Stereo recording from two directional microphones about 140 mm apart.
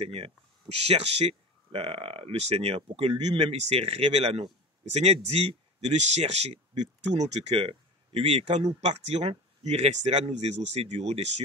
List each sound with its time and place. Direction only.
0.0 s speech: 45° right (ahead or behind)